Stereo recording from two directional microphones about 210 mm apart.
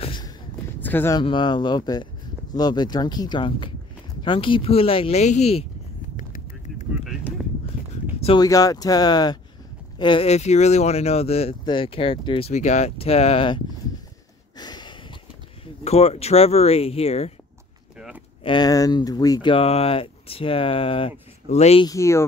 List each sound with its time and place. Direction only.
0.0 s a sound: 20° left (ahead or behind)
0.8 s speech: 10° left (ahead or behind)
1.2 s speech: 20° left (ahead or behind)
8.2 s speech: 20° left (ahead or behind)
14.6 s a sound: 20° left (ahead or behind)
15.6 s speech: 30° left (ahead or behind)
17.9 s a sound: 5° right (ahead or behind)
18.4 s speech: 20° left (ahead or behind)
21.8 s speech: 15° left (ahead or behind)